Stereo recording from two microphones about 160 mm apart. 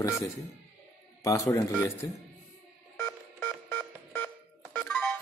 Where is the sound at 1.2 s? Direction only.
20° left (ahead or behind).